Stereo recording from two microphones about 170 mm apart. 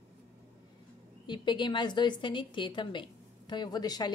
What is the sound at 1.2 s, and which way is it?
A woman's voice, 25° left (ahead or behind).